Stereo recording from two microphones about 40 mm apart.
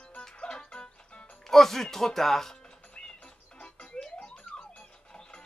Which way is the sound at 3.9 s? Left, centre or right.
Left.